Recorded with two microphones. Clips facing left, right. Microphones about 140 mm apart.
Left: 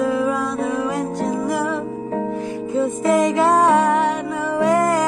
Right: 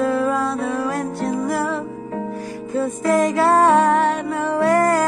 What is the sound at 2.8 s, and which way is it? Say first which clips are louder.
Music: left 1 dB; 20° left (ahead or behind).